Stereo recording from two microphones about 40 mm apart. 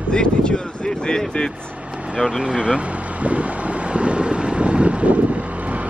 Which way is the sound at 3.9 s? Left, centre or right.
Right.